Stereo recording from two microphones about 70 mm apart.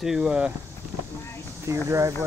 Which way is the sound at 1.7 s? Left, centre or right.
Right.